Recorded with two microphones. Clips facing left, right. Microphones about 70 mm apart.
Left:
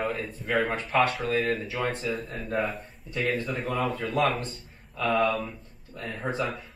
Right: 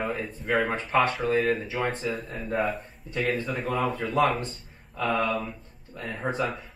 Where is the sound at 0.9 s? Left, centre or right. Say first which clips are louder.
Right 1 dB; right.